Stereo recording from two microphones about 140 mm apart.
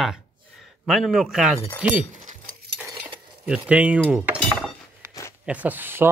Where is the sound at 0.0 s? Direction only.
Centre (ahead or behind).